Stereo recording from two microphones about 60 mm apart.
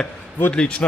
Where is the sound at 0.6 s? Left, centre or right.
Centre.